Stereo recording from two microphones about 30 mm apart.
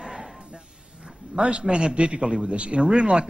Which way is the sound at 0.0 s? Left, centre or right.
Centre.